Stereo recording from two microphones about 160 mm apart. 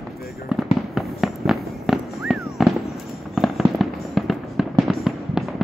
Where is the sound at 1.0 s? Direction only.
Centre (ahead or behind).